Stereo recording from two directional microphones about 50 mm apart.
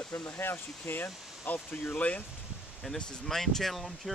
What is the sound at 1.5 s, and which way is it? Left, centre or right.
Speech, left.